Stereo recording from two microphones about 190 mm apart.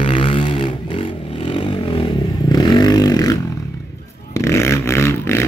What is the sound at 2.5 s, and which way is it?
Vehicle, 20° left (ahead or behind).